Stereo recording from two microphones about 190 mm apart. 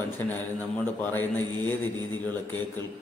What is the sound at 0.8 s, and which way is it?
A man's voice, 10° left (ahead or behind).